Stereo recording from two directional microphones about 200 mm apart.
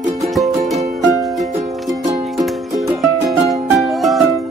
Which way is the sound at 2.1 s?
15° right (ahead or behind).